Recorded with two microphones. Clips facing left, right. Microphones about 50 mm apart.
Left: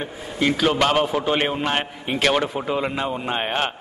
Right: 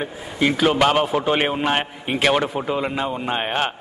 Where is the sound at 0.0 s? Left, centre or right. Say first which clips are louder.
Right 1 dB; centre.